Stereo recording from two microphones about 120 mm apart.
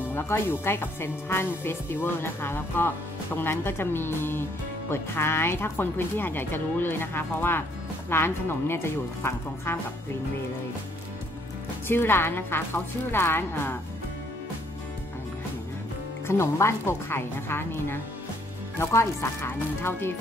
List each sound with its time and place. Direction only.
0.1 s speech: 20° left (ahead or behind)
11.9 s speech: 20° left (ahead or behind)
16.3 s speech: 20° left (ahead or behind)